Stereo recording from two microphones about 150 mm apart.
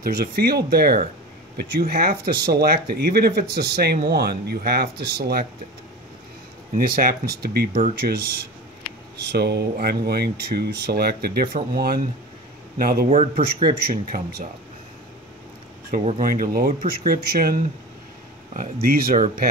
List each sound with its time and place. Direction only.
0.0 s speech: 85° right
6.9 s speech: 80° right
9.4 s speech: 90° right
11.5 s speech: 75° right (ahead or behind)
16.2 s speech: 70° right (ahead or behind); by 17.6 s 85° right
18.5 s speech: 70° right (ahead or behind)